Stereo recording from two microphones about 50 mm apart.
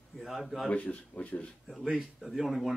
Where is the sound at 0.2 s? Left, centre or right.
Centre.